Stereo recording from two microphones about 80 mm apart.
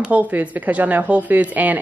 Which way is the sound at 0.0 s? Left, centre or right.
Centre.